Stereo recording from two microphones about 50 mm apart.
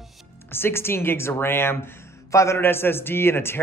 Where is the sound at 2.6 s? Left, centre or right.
Left.